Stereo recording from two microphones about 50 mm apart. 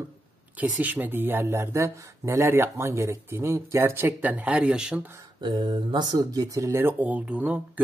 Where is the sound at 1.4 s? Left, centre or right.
Right.